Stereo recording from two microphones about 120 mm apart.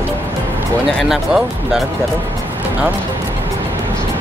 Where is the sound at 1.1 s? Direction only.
5° right (ahead or behind).